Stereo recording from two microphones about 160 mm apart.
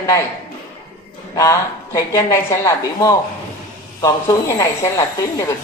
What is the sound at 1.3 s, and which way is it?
A woman's voice, 20° left (ahead or behind).